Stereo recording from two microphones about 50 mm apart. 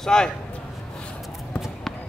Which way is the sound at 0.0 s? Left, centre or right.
Centre.